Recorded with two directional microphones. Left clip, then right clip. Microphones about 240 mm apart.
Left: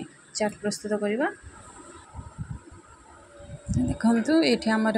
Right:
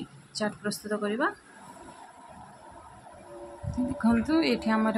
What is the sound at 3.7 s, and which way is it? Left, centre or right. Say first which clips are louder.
Speech: left 2 dB; centre.